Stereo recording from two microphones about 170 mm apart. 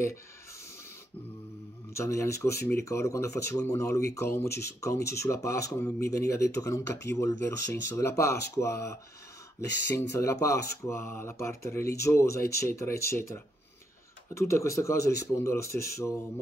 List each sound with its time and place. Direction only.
2.0 s speech: 15° left (ahead or behind)